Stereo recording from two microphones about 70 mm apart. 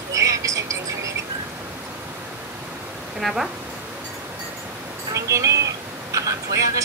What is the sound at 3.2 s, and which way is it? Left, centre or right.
Speech, centre.